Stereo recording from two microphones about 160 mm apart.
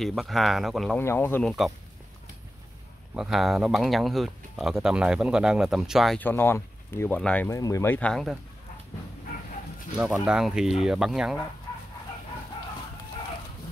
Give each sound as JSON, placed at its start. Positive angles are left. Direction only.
{"t": 0.0, "sound": "speech", "side_deg": 0}
{"t": 0.9, "sound": "speech", "side_deg": 15}
{"t": 3.2, "sound": "speech", "side_deg": 0}
{"t": 6.1, "sound": "speech", "side_deg": 15}
{"t": 7.4, "sound": "speech", "side_deg": 20}
{"t": 9.9, "sound": "speech", "side_deg": -5}